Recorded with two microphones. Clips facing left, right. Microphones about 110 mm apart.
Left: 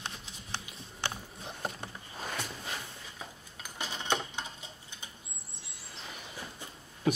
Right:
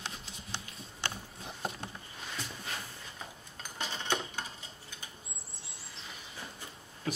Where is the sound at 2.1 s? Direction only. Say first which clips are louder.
Left 5 dB; 55° left (ahead or behind).